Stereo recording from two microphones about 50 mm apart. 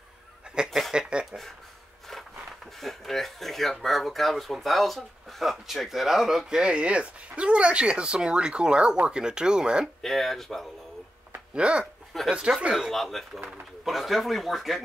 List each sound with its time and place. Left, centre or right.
0.8 s a sound: centre
1.1 s speech: centre
2.8 s speech: centre
6.6 s speech: right
10.0 s speech: centre
11.5 s speech: right
12.9 s speech: centre